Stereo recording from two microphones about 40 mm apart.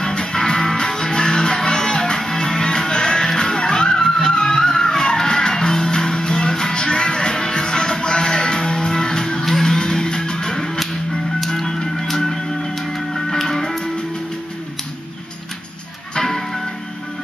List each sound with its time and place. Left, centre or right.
0.0 s music: left
16.2 s music: centre